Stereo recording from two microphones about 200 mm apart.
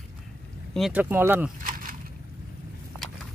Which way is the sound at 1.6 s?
45° right (ahead or behind).